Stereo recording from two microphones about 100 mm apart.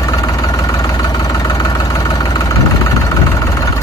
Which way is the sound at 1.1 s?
40° left (ahead or behind).